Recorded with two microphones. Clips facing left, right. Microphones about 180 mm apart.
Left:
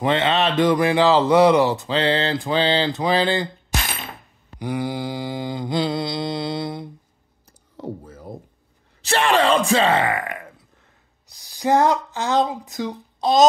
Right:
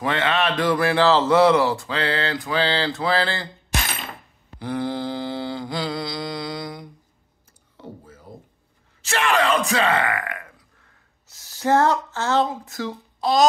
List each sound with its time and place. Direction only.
0.0 s speech: 20° left (ahead or behind)
4.6 s speech: 10° left (ahead or behind)
7.7 s computer keyboard: 40° left (ahead or behind)
9.0 s speech: 30° left (ahead or behind)
11.2 s speech: 15° left (ahead or behind)